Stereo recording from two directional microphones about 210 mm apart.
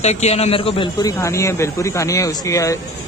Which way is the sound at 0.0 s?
30° left (ahead or behind).